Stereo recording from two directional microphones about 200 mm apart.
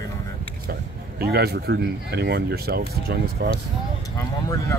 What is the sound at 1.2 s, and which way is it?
Speech, 50° right (ahead or behind).